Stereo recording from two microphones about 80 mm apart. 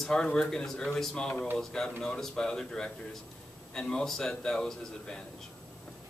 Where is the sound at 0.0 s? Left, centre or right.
Centre.